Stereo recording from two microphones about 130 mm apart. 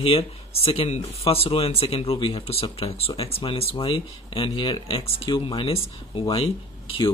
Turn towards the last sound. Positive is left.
turn(degrees=45)  # may be behind; listen again after turning